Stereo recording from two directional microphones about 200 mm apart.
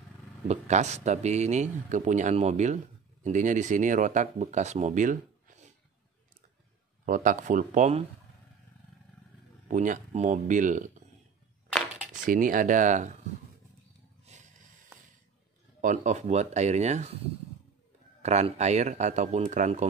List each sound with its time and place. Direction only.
0.5 s speech: 35° right (ahead or behind)
7.1 s speech: 40° right (ahead or behind)
9.7 s speech: 40° right (ahead or behind)
12.3 s speech: 45° right (ahead or behind)
14.3 s a sound: 35° right (ahead or behind)
15.8 s speech: 40° right (ahead or behind)
18.2 s speech: 35° right (ahead or behind)